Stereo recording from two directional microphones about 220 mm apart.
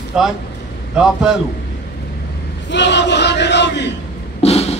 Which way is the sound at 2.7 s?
50° left (ahead or behind).